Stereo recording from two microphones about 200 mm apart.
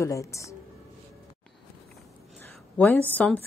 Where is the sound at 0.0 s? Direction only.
15° left (ahead or behind).